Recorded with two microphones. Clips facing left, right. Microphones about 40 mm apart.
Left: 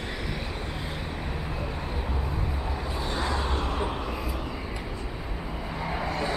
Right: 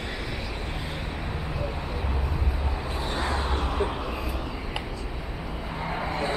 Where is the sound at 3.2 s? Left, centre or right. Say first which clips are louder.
Right 1 dB; centre.